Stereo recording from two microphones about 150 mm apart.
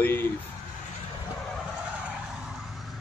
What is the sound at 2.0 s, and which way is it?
Vehicle, 5° right (ahead or behind).